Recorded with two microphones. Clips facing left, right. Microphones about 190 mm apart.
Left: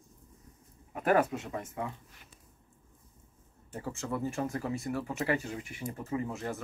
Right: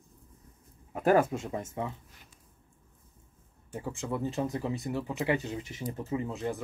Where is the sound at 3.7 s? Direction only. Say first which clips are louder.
Right 1 dB; 15° right (ahead or behind).